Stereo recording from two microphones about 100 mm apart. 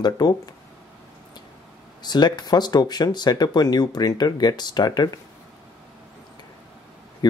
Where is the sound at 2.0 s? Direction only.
45° left (ahead or behind).